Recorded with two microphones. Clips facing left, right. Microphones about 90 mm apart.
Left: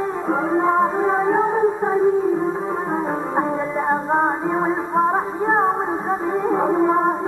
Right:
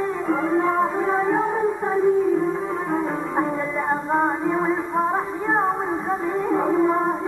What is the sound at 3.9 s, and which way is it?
Music, 35° left (ahead or behind).